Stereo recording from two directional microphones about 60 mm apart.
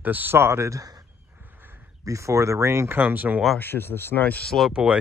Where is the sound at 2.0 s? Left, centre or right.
Right.